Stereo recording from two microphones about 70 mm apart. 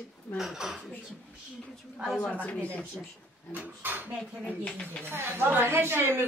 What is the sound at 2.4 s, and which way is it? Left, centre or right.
Speech, centre.